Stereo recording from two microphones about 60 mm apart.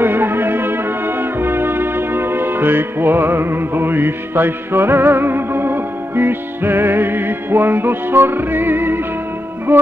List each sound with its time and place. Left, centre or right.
0.0 s music: right